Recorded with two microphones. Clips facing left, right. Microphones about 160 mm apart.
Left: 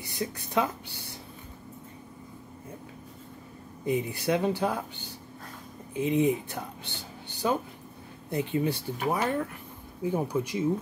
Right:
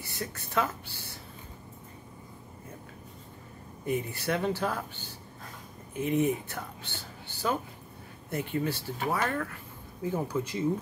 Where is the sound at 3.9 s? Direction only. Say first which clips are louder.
Left 3 dB; 15° left (ahead or behind).